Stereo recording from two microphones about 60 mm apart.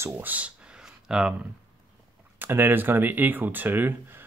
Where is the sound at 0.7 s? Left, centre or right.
Centre.